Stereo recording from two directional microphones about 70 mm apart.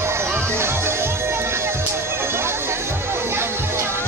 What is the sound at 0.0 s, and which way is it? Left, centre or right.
Music, right.